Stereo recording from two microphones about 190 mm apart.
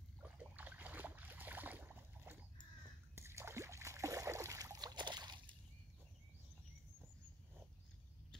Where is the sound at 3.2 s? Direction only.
15° right (ahead or behind).